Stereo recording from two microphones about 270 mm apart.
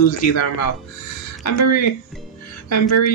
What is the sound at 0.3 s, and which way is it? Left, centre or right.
A man's voice, left.